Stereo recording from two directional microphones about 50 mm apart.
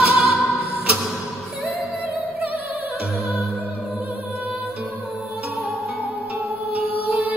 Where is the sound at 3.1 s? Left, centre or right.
Centre.